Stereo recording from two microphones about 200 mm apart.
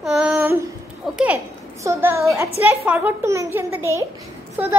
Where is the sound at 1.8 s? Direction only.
15° right (ahead or behind).